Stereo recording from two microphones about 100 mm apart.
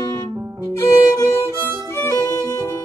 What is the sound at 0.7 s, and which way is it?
Violin, 30° left (ahead or behind).